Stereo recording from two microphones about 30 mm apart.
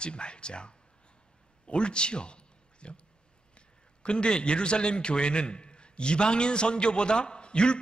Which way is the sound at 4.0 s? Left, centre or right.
Left.